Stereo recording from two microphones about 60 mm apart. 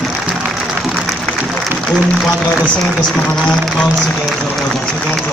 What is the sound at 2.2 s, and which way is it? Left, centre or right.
Speech, centre.